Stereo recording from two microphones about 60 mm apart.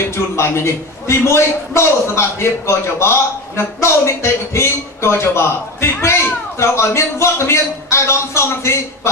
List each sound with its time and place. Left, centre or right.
0.1 s a man's voice: left